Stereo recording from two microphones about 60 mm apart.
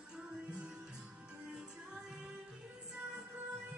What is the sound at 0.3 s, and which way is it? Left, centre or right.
Music, right.